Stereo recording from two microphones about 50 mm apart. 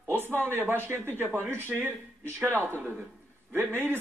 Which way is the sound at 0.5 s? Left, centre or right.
Right.